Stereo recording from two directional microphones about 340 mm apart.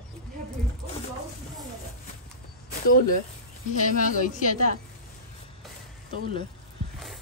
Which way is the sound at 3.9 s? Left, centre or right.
Left.